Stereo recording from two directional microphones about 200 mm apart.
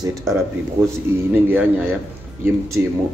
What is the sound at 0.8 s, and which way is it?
A man's voice, 10° right (ahead or behind).